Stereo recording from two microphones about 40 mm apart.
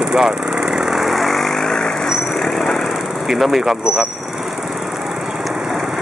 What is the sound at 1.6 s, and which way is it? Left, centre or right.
Vehicle, centre.